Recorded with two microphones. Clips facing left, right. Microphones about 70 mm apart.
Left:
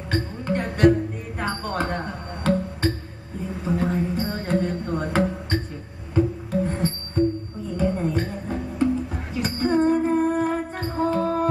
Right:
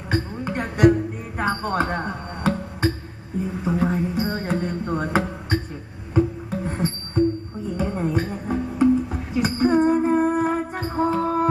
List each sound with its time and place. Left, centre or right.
0.1 s music: centre